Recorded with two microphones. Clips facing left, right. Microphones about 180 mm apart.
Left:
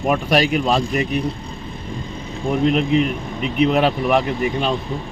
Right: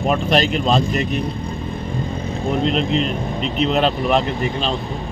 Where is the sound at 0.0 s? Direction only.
10° left (ahead or behind).